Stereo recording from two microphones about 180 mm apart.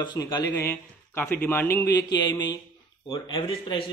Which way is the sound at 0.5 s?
10° left (ahead or behind).